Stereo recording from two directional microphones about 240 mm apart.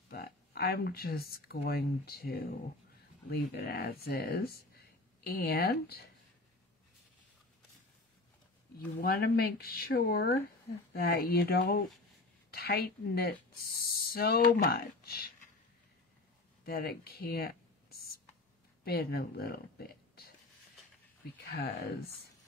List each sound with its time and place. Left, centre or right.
0.1 s speech: left
8.7 s speech: left
16.6 s speech: left
17.9 s a sound: left
18.9 s speech: left
21.5 s speech: left